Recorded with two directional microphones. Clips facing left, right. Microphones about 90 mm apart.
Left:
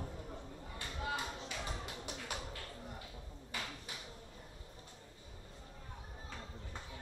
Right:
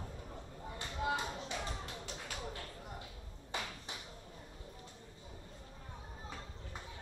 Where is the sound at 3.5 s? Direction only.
25° right (ahead or behind).